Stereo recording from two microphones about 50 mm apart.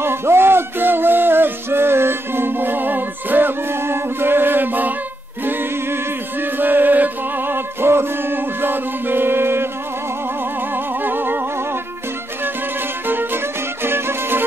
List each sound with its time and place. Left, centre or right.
0.0 s music: right
5.4 s a capella: right
6.4 s music: right
10.7 s music: right
13.0 s music: right